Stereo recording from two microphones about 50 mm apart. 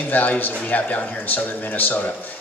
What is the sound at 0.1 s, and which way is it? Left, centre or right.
A man's voice, left.